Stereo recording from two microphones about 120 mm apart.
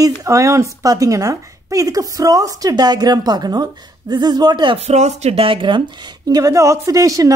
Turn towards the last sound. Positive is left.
turn(degrees=-30)  # may be behind; listen again after turning